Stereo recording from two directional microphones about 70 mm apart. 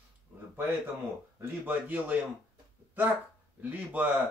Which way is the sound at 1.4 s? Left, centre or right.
Right.